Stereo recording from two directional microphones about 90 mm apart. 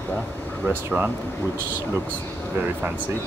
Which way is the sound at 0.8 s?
20° right (ahead or behind).